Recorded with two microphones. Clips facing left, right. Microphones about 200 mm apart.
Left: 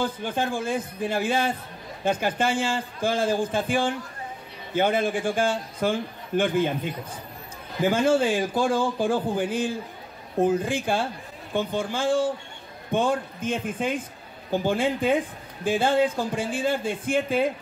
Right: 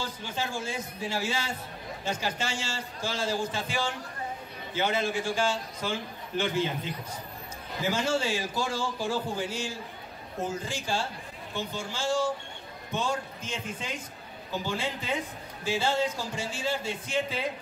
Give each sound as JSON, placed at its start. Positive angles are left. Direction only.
{"t": 0.0, "sound": "speech", "side_deg": 55}